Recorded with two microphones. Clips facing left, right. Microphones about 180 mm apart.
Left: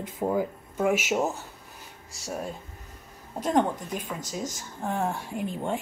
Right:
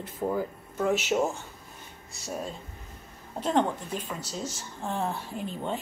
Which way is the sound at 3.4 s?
10° left (ahead or behind).